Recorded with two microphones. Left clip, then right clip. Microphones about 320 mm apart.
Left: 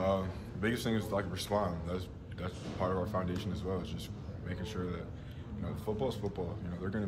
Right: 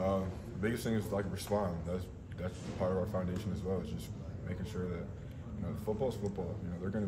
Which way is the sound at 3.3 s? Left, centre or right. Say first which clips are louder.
Left 2 dB; right.